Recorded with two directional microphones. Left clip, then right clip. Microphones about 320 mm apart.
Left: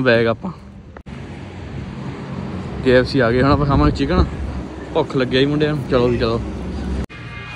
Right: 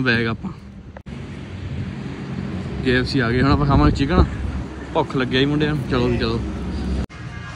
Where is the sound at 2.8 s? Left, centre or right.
Centre.